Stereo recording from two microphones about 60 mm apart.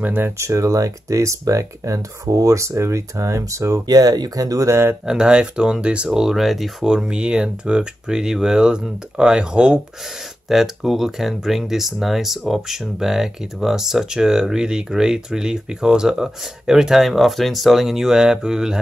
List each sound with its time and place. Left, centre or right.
0.0 s speech: right
0.4 s speech: right
4.6 s speech: right
5.0 s speech: centre
10.5 s speech: centre